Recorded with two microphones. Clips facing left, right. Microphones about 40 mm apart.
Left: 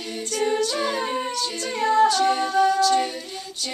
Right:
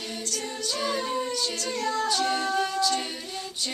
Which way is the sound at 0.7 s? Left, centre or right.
Left.